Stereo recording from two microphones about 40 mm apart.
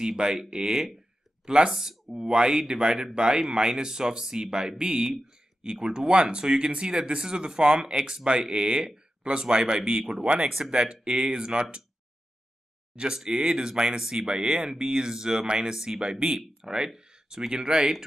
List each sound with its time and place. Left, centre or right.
0.0 s speech: centre
1.4 s speech: right
1.7 s speech: centre
10.2 s speech: right
13.1 s speech: centre
16.6 s a sound: centre
17.5 s speech: centre